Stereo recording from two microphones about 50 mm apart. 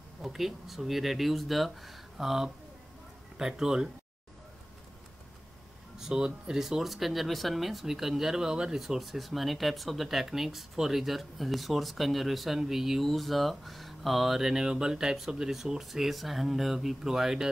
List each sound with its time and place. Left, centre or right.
0.2 s speech: centre
5.9 s speech: centre